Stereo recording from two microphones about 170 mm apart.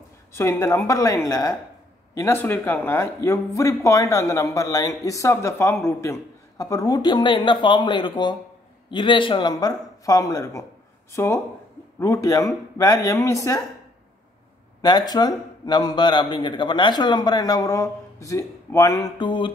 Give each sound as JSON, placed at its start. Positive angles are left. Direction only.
{"t": 0.3, "sound": "a man's voice", "side_deg": 15}
{"t": 14.8, "sound": "a man's voice", "side_deg": 25}